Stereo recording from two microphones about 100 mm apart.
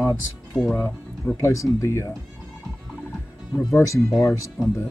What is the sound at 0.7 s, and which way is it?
Speech, 25° left (ahead or behind).